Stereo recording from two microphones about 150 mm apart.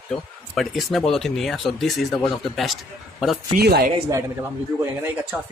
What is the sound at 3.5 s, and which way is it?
Speech, 90° right.